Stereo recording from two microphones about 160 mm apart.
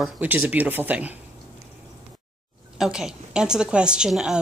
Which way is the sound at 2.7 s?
5° right (ahead or behind).